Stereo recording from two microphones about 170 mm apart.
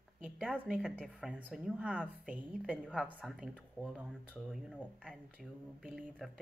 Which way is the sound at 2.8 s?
5° left (ahead or behind).